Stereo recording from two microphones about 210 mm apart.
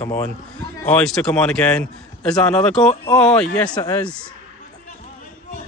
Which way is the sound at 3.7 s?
15° left (ahead or behind).